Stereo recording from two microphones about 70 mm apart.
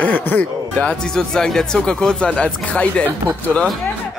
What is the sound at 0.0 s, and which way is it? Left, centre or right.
Speech, left.